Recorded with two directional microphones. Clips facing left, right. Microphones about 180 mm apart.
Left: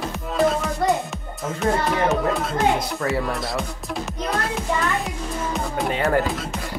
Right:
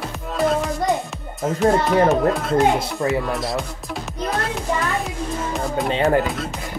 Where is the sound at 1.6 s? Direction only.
Centre (ahead or behind).